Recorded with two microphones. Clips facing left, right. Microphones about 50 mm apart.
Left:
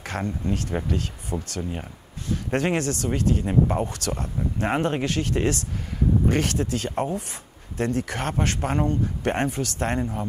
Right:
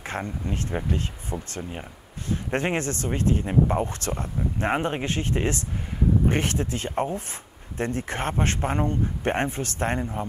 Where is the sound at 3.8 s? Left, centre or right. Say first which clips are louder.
Left 1 dB; right.